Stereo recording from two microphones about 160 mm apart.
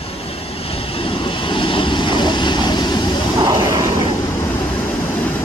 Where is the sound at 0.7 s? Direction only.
35° left (ahead or behind).